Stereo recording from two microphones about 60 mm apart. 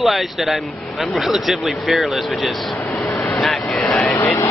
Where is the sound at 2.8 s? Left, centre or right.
Left.